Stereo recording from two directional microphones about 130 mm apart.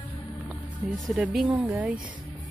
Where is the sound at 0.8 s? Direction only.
15° right (ahead or behind).